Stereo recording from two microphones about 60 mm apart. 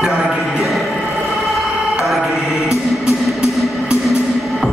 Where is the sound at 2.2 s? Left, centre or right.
Centre.